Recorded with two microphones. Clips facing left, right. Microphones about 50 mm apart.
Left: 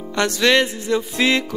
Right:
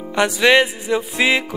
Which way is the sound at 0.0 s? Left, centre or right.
Centre.